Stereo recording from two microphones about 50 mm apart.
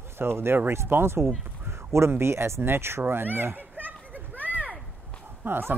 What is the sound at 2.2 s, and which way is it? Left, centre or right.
Speech, right.